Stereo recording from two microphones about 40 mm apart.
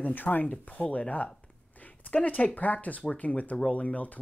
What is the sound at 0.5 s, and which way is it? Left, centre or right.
Speech, left.